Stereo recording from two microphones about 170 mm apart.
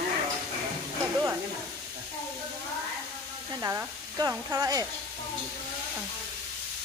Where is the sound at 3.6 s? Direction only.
15° right (ahead or behind).